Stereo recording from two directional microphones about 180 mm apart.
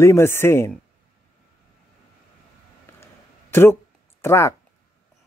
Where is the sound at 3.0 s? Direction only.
15° left (ahead or behind).